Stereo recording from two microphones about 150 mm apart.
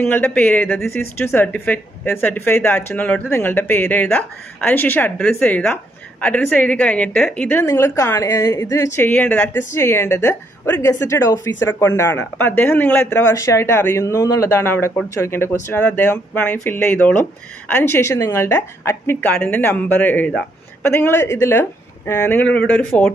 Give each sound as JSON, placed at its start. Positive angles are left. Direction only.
{"t": 0.0, "sound": "a woman's voice", "side_deg": 10}